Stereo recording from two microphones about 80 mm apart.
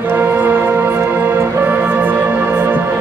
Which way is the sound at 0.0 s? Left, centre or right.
Right.